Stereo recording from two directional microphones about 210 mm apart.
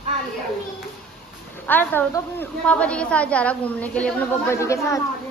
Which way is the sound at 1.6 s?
10° left (ahead or behind).